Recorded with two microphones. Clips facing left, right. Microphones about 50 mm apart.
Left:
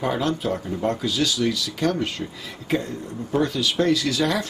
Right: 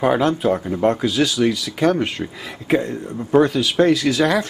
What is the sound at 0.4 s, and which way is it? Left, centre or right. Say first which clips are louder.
Speech: right 7 dB; centre.